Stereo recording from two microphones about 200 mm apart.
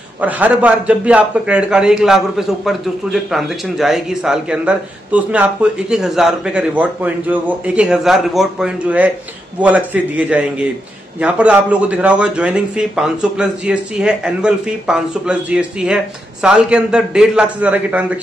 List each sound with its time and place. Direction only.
0.2 s a man's voice: 5° right (ahead or behind)